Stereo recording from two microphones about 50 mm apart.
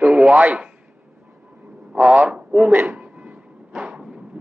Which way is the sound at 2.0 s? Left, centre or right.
Right.